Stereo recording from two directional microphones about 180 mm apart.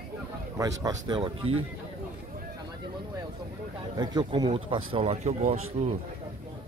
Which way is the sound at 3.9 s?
25° right (ahead or behind).